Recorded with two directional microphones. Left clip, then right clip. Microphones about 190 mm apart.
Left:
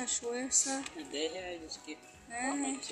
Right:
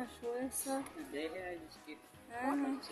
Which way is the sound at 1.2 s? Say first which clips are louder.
Left 5 dB; 30° left (ahead or behind).